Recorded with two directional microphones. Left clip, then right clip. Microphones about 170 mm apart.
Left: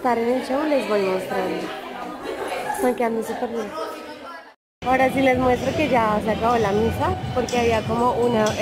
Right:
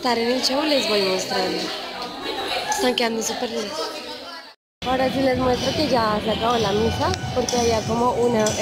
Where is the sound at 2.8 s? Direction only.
Centre (ahead or behind).